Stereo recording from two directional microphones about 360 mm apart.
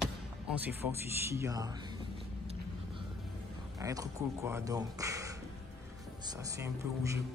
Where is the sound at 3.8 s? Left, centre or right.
Centre.